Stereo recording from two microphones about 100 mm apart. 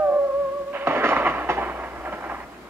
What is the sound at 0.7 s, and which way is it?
Thunder, 20° right (ahead or behind).